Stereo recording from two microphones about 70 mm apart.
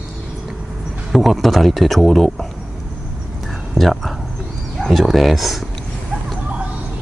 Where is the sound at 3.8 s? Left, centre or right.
Centre.